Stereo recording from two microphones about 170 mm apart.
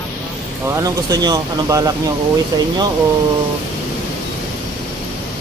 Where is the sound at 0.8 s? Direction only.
20° right (ahead or behind).